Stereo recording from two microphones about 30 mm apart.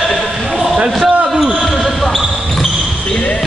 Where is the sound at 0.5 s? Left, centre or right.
Centre.